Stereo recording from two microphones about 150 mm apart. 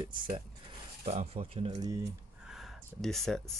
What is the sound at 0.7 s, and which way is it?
Speech, 45° right (ahead or behind).